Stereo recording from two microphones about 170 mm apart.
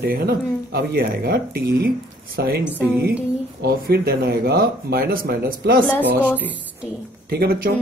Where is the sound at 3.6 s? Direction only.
70° right (ahead or behind).